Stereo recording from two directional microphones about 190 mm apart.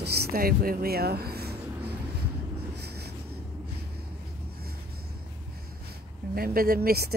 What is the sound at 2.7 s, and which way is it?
Writing, 60° right (ahead or behind).